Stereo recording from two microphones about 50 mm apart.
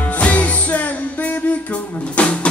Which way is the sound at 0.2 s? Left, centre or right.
Left.